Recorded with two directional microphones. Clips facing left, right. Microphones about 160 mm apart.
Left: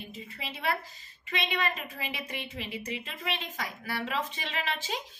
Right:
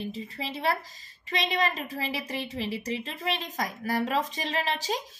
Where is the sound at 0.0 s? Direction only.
35° right (ahead or behind).